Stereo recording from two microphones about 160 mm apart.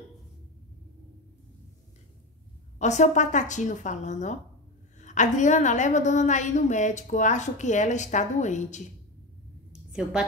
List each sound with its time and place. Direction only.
2.8 s a woman's voice: 45° left (ahead or behind)